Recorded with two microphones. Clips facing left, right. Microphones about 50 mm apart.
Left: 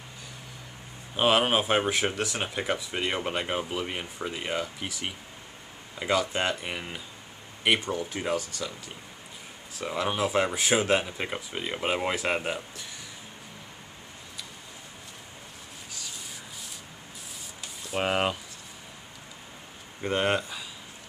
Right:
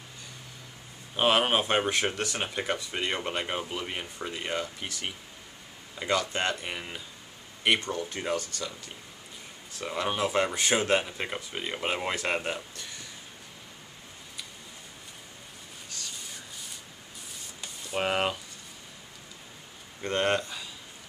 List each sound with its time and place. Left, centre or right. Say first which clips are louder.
1.1 s speech: left 1 dB; centre
15.9 s rub: even; centre
17.6 s a sound: left 1 dB; centre
20.0 s speech: left 1 dB; centre